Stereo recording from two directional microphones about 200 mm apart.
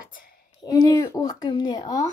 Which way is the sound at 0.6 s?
20° left (ahead or behind).